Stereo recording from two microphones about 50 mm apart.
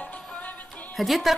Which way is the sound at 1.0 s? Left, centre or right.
Centre.